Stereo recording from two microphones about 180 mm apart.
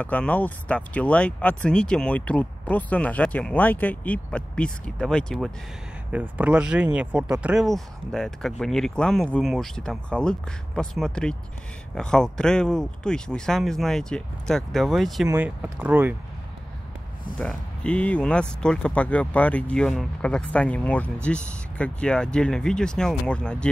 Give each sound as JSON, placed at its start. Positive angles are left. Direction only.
{"t": 0.0, "sound": "speech", "side_deg": 10}
{"t": 6.1, "sound": "speech", "side_deg": -10}
{"t": 15.2, "sound": "speech", "side_deg": -10}
{"t": 17.4, "sound": "speech", "side_deg": 5}